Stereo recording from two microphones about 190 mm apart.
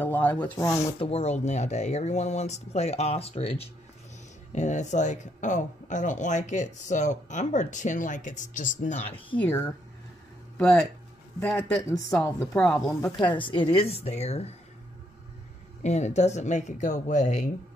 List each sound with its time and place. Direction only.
0.0 s speech: 10° left (ahead or behind)
0.9 s speech: 30° left (ahead or behind)
9.4 s a woman's voice: 10° left (ahead or behind)
12.1 s a woman's voice: 5° left (ahead or behind)
13.2 s speech: 25° left (ahead or behind)
15.8 s speech: 35° left (ahead or behind)